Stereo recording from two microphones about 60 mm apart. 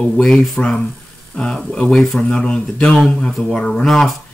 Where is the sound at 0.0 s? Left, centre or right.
Centre.